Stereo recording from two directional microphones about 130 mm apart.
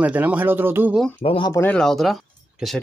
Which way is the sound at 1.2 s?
40° left (ahead or behind).